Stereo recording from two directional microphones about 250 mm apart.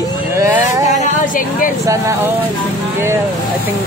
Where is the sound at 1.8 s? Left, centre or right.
Centre.